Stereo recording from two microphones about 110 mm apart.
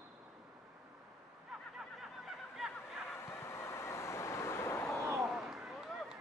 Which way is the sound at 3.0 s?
20° left (ahead or behind).